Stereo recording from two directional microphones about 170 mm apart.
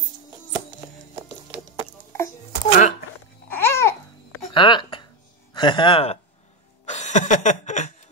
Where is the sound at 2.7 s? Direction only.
45° left (ahead or behind).